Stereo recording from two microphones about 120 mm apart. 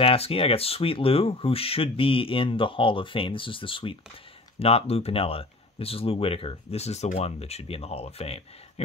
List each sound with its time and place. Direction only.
0.0 s speech: 55° left (ahead or behind)
4.6 s speech: 55° left (ahead or behind)